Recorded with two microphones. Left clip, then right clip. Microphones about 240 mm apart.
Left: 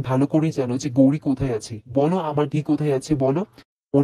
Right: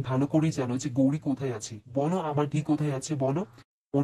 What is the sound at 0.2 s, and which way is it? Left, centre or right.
Speech, left.